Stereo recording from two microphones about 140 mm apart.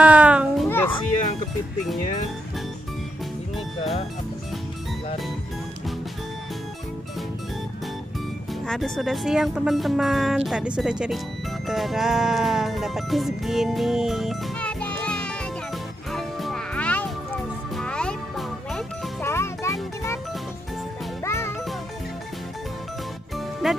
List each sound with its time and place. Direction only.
0.0 s children playing: 10° right (ahead or behind)
0.7 s music: 15° left (ahead or behind)
8.6 s speech: 5° left (ahead or behind)
11.6 s music: centre (ahead or behind)
19.2 s music: 20° left (ahead or behind)
21.2 s music: 20° left (ahead or behind)
23.3 s music: centre (ahead or behind)